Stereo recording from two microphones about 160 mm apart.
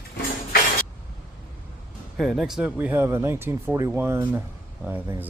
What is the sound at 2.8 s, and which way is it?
Speech, 15° right (ahead or behind).